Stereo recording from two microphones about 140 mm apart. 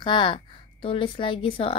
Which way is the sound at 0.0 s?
35° left (ahead or behind).